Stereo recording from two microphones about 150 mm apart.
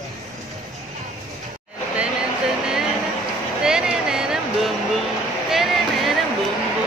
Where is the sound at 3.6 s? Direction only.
5° right (ahead or behind).